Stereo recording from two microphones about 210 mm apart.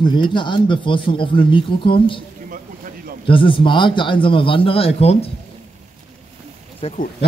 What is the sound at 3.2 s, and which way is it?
Speech, 25° left (ahead or behind).